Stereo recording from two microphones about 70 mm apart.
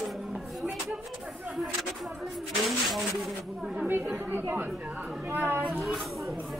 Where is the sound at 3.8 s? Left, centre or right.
Right.